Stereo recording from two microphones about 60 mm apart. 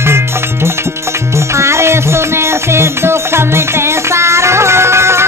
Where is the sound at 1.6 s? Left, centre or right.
Right.